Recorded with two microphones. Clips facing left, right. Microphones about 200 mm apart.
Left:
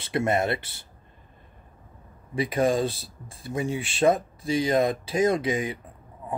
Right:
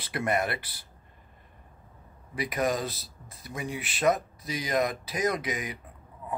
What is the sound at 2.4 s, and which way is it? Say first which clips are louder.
Speech: left 6 dB; 25° left (ahead or behind).